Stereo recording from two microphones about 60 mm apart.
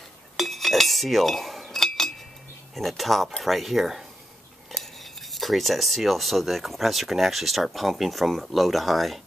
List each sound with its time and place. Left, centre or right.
0.4 s cutlery: centre
2.7 s speech: centre
5.3 s speech: centre